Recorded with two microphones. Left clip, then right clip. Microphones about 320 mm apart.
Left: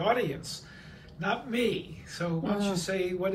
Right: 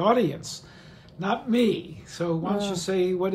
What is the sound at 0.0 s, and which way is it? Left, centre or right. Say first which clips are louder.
Speech: right 6 dB; centre.